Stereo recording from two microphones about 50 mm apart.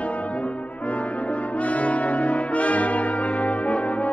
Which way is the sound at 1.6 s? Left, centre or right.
Left.